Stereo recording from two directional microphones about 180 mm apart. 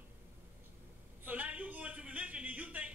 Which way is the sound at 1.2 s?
10° right (ahead or behind).